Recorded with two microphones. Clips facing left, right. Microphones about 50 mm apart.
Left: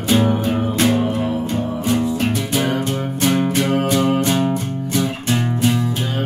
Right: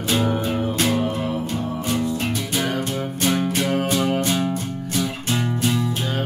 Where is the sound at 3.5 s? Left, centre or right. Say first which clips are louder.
Left 4 dB; left.